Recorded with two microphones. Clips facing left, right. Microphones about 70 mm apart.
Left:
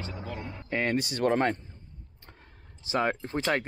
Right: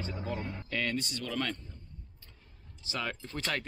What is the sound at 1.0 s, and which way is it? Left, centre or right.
Speech, left.